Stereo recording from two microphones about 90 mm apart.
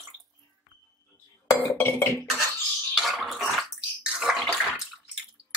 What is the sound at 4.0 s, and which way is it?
Bathtub, 5° right (ahead or behind).